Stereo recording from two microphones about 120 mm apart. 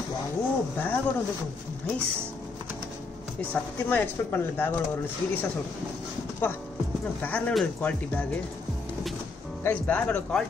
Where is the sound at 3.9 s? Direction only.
15° left (ahead or behind).